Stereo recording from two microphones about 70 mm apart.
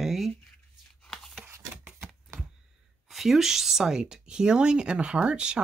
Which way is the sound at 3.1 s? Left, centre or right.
Centre.